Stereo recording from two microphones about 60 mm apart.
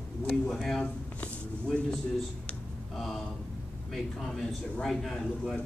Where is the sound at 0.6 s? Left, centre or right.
Centre.